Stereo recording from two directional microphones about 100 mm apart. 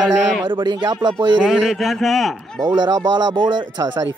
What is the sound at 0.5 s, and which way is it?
Speech, 55° right (ahead or behind).